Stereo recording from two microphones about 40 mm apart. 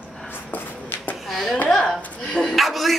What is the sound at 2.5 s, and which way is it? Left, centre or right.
Speech, centre.